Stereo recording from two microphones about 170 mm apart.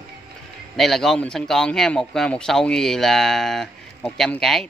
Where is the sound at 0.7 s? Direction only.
Centre (ahead or behind).